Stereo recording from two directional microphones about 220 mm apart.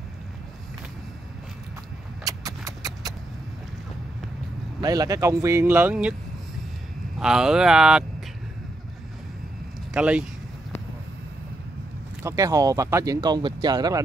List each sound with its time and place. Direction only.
2.2 s a sound: 15° right (ahead or behind)
4.7 s speech: 15° right (ahead or behind)
7.2 s speech: 5° right (ahead or behind)
9.9 s speech: 5° right (ahead or behind)
12.2 s speech: 15° right (ahead or behind)